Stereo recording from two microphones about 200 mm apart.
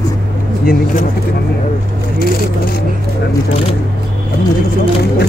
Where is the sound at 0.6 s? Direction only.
45° left (ahead or behind).